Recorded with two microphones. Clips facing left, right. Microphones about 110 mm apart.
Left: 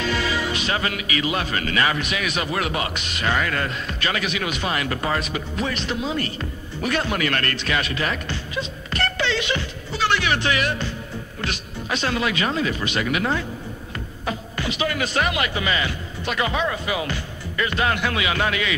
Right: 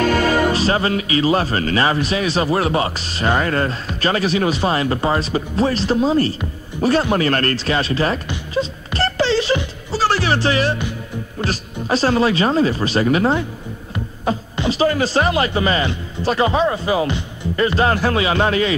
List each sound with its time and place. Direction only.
0.0 s music: 50° right (ahead or behind)
0.6 s speech: 35° right (ahead or behind)
8.5 s music: 30° right (ahead or behind)
9.9 s speech: 35° right (ahead or behind)